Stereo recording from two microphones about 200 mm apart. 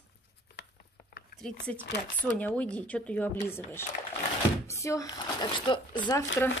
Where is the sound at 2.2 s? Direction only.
5° left (ahead or behind).